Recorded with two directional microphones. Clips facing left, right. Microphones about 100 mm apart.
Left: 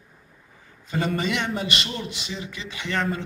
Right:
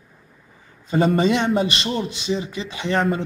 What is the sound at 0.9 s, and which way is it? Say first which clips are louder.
A man's voice: right 8 dB; 30° right (ahead or behind).